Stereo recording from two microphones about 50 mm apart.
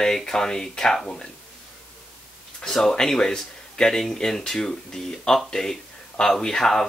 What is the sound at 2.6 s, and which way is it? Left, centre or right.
A man's voice, centre.